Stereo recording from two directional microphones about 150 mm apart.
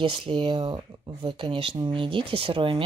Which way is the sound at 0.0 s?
35° right (ahead or behind).